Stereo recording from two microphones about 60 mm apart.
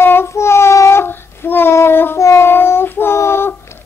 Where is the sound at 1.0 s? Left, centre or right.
Left.